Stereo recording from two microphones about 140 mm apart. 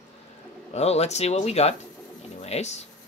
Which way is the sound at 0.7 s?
50° left (ahead or behind).